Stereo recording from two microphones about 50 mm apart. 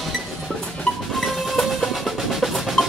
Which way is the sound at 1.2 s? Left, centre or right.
Centre.